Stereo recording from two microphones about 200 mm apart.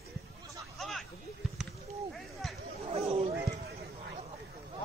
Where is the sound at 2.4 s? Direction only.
Centre (ahead or behind).